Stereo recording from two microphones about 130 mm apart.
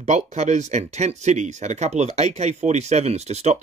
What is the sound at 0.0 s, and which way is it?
Speech, 60° right (ahead or behind).